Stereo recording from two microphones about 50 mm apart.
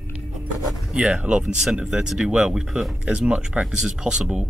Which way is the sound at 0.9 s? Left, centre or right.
Centre.